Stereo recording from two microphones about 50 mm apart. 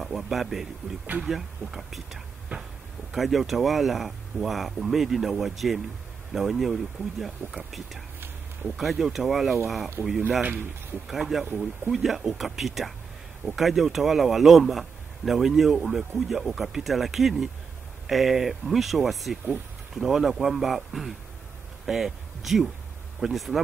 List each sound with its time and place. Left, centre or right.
0.0 s speech: centre
2.5 s a sound: right
3.1 s speech: centre
10.0 s speech: right
10.5 s speech: right
11.1 s speech: centre